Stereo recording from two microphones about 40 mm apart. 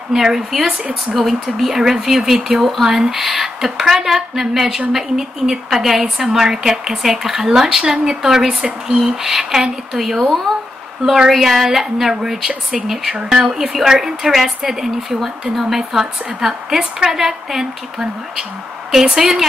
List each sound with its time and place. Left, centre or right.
0.1 s speech: centre
1.7 s speech: centre